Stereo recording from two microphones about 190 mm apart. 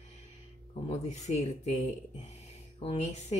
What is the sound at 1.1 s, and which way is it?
Speech, 35° left (ahead or behind).